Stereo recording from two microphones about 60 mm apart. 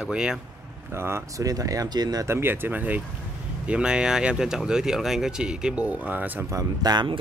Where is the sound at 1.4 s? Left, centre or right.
Right.